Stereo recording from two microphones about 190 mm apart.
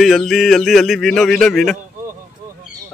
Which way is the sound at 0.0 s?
Centre (ahead or behind).